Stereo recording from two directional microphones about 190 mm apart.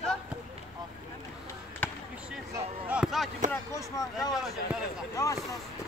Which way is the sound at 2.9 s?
Centre (ahead or behind).